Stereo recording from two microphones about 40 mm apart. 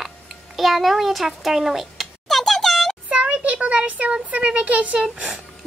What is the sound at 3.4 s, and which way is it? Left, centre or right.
A child's voice, right.